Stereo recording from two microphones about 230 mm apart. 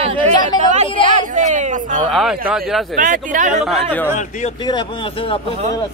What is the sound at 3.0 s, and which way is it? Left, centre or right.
Speech, right.